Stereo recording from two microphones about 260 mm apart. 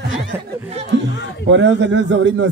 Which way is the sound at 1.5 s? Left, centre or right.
Right.